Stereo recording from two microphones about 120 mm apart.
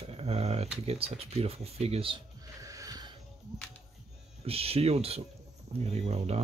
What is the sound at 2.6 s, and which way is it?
Music, 30° right (ahead or behind).